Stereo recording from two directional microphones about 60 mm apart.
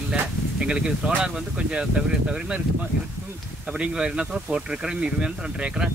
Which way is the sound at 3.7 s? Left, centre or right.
Centre.